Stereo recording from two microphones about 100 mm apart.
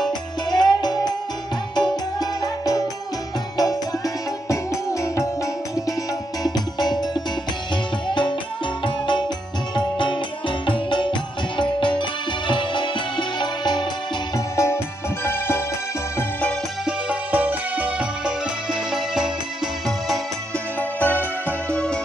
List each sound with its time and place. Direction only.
0.5 s music: 45° left (ahead or behind)
6.4 s music: 45° left (ahead or behind)
14.3 s music: 30° left (ahead or behind)
16.2 s music: 15° left (ahead or behind)
16.8 s music: 15° right (ahead or behind)
21.0 s music: 20° left (ahead or behind)